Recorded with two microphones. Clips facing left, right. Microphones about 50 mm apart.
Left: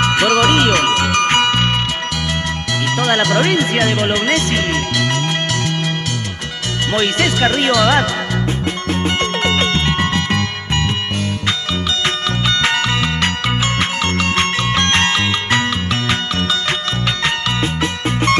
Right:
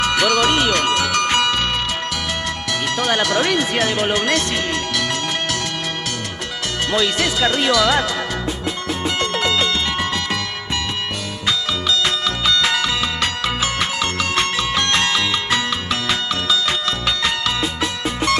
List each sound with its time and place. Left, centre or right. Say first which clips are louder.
0.0 s music: left 3 dB; left
3.0 s speech: left 4 dB; left
6.9 s speech: left 3 dB; left
9.0 s music: left 2 dB; left
12.4 s music: left 2 dB; left
14.3 s music: left 3 dB; left